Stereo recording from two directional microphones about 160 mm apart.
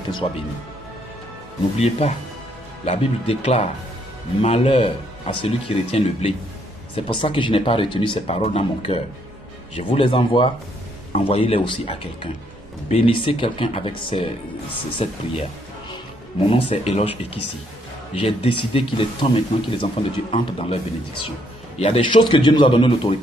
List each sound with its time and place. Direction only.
1.8 s speech: 40° left (ahead or behind)
16.4 s speech: 35° left (ahead or behind)